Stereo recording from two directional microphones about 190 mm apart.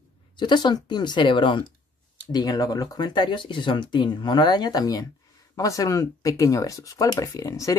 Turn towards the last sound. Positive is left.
turn(degrees=20)  # may be behind; listen again after turning